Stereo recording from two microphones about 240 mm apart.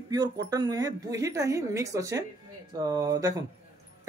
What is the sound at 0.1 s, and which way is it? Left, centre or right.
Speech, centre.